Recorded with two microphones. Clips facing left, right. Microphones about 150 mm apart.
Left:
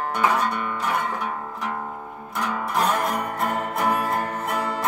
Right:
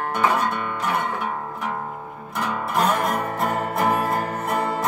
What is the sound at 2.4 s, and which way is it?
Music, centre (ahead or behind).